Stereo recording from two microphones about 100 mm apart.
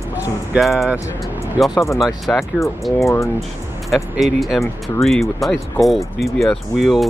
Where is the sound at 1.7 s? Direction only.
30° left (ahead or behind).